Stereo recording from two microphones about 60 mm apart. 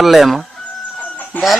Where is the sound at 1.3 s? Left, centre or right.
Left.